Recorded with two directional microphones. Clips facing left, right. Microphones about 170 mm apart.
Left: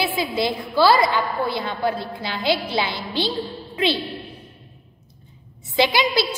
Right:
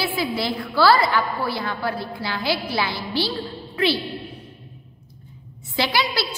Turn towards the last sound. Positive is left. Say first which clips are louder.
# left 4 dB
turn(degrees=20)  # may be behind; listen again after turning